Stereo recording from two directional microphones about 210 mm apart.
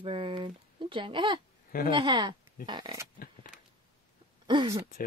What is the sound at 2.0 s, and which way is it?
Speech, 20° right (ahead or behind).